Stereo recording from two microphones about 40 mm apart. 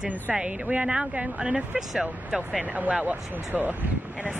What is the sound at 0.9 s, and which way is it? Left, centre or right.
Speech, right.